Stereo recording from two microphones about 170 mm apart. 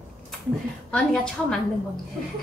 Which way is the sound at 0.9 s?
5° left (ahead or behind).